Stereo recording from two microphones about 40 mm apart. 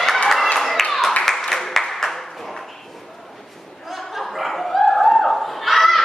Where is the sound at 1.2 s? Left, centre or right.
Centre.